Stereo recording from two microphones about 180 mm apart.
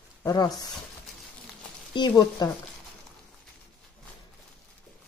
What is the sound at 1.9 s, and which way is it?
Speech, 25° left (ahead or behind).